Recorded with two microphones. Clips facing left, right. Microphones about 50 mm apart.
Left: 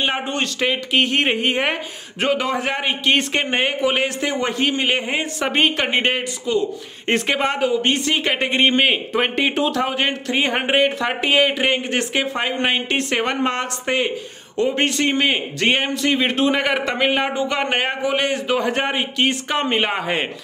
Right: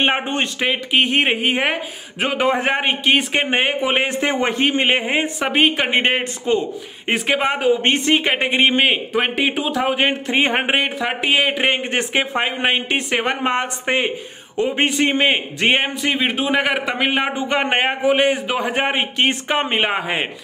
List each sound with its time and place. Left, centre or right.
0.0 s speech: right; by 2.3 s centre
2.3 s a man's voice: right
3.1 s a man's voice: centre
6.5 s speech: right
7.1 s speech: centre